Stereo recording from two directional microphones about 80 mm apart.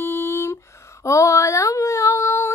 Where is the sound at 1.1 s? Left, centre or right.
Left.